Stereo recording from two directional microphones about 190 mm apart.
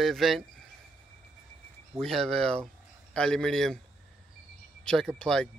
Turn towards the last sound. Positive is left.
turn(degrees=5)  # may be behind; listen again after turning